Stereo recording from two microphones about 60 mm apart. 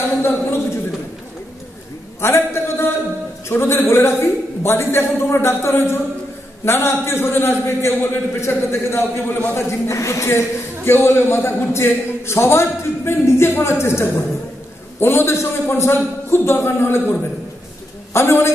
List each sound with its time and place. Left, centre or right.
2.2 s a sound: left
3.4 s a man's voice: left
9.5 s a man's voice: left